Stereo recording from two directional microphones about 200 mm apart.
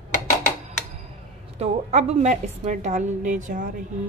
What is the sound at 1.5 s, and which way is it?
A woman's voice, 30° right (ahead or behind).